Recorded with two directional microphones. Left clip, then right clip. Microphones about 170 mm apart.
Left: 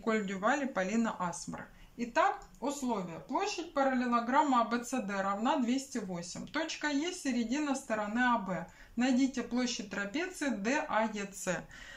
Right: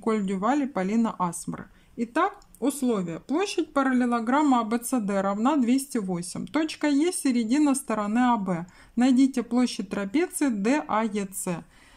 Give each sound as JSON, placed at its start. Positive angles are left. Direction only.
{"t": 0.0, "sound": "speech", "side_deg": -45}
{"t": 11.5, "sound": "speech", "side_deg": -30}